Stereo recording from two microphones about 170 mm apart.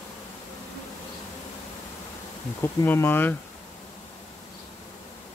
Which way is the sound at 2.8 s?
15° left (ahead or behind).